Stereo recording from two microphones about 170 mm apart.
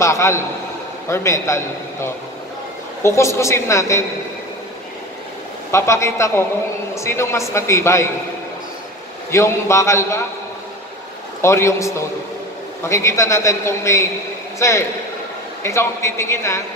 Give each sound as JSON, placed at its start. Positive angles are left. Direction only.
{"t": 0.0, "sound": "a man's voice", "side_deg": 15}
{"t": 5.7, "sound": "a man's voice", "side_deg": 15}
{"t": 9.3, "sound": "a man's voice", "side_deg": 15}
{"t": 11.4, "sound": "a man's voice", "side_deg": 15}